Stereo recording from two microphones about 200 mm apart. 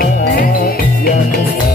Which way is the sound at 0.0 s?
45° left (ahead or behind).